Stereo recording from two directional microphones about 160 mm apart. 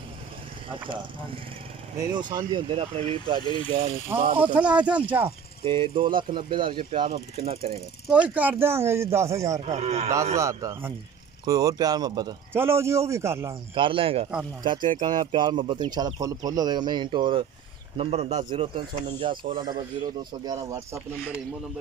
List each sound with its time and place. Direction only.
0.7 s speech: 30° right (ahead or behind)
4.1 s speech: 10° right (ahead or behind)
5.6 s speech: 30° right (ahead or behind)
8.1 s speech: 10° right (ahead or behind)
9.7 s speech: 40° right (ahead or behind)
10.3 s speech: 20° right (ahead or behind)
13.7 s speech: 35° right (ahead or behind)
14.9 s speech: 55° right (ahead or behind)
15.3 s speech: 30° right (ahead or behind)
18.5 s speech: 30° right (ahead or behind)